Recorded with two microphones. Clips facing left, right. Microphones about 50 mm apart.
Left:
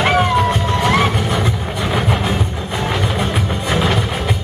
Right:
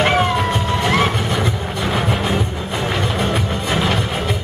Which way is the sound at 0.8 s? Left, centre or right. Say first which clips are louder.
Left 2 dB; centre.